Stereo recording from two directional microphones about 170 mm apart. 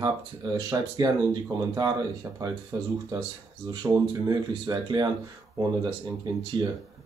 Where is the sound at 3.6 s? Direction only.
25° right (ahead or behind).